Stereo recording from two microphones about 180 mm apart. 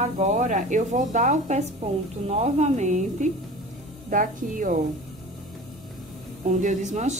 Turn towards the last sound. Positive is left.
turn(degrees=-40)  # may be behind; listen again after turning